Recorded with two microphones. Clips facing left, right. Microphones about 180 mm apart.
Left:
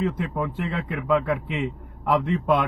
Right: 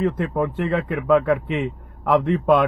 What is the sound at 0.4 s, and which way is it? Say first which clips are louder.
A man's voice: right 9 dB; 60° right (ahead or behind).